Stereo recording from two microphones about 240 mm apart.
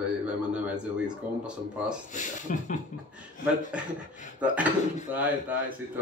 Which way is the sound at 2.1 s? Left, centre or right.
Left.